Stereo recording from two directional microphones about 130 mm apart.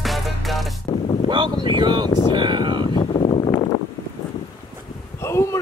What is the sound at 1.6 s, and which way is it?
Speech, 35° right (ahead or behind).